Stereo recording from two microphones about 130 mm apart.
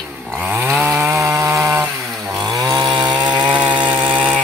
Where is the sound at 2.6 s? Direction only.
30° right (ahead or behind).